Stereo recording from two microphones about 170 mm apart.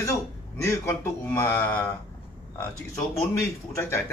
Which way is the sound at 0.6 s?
15° left (ahead or behind).